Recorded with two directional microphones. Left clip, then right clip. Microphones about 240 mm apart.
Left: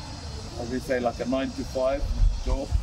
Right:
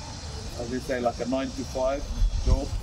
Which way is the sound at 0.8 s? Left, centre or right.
Centre.